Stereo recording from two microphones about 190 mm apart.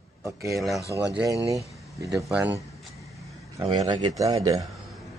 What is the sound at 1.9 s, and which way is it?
Speech, 15° right (ahead or behind).